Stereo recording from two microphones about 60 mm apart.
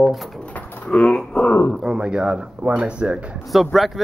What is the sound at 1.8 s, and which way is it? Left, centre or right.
Speech, centre.